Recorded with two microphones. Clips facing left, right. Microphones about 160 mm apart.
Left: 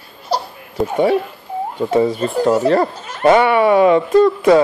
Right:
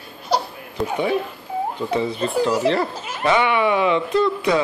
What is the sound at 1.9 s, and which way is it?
Speech, 45° left (ahead or behind).